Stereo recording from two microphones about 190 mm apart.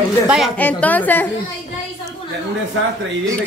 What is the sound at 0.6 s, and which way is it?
Speech, 10° left (ahead or behind).